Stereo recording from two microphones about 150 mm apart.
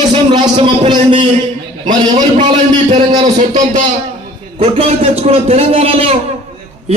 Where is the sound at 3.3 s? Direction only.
55° right (ahead or behind).